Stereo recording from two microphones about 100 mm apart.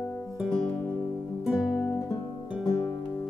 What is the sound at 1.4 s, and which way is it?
Music, 5° right (ahead or behind).